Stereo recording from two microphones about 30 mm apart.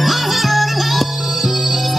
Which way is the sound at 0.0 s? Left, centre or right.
Centre.